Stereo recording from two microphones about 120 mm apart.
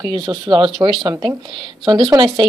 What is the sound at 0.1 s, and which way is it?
A woman's voice, 45° right (ahead or behind).